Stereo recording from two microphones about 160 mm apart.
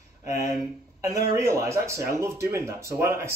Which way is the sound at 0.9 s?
20° right (ahead or behind).